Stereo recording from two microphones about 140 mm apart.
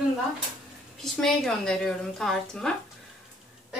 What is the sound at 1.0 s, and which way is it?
Speech, 5° left (ahead or behind).